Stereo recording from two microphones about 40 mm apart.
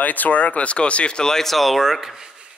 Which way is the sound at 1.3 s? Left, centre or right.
Centre.